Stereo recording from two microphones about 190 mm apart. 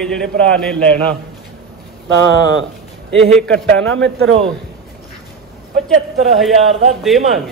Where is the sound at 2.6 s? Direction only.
75° right (ahead or behind).